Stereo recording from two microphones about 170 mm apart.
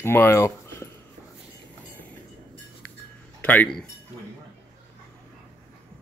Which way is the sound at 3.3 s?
10° left (ahead or behind).